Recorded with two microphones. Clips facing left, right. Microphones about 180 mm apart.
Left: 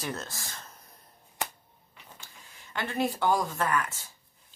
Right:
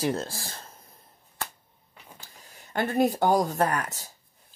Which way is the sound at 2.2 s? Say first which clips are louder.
Right 2 dB; 40° right (ahead or behind).